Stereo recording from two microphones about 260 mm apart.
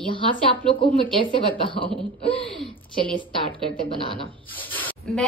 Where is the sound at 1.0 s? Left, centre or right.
Centre.